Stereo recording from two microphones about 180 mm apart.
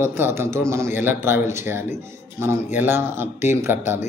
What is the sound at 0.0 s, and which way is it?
A man's voice, 15° right (ahead or behind).